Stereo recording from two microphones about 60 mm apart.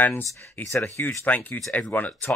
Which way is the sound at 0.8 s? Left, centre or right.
Left.